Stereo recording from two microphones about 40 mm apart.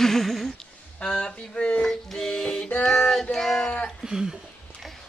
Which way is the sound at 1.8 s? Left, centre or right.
Centre.